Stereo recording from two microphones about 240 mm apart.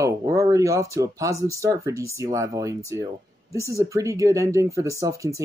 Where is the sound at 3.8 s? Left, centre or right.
Centre.